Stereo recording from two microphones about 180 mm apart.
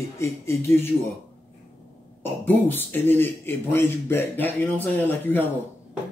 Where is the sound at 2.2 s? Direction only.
10° left (ahead or behind).